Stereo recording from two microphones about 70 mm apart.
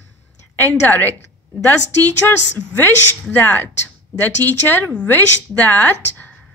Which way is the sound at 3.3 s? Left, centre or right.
Left.